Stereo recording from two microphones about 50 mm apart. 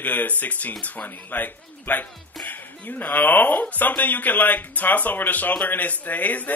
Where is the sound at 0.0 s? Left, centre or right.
Left.